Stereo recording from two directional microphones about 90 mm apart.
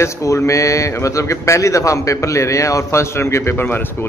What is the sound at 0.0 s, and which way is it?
Speech, 35° left (ahead or behind).